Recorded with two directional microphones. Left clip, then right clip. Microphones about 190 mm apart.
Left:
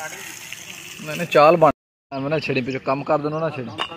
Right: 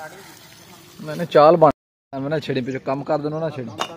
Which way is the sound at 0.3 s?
25° right (ahead or behind).